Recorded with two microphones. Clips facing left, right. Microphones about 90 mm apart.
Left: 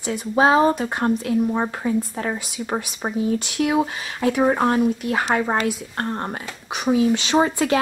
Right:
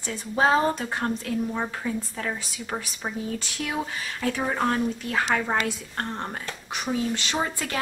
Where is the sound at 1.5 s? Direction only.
25° left (ahead or behind).